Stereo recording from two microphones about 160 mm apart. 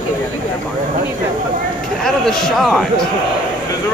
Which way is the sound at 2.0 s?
5° left (ahead or behind).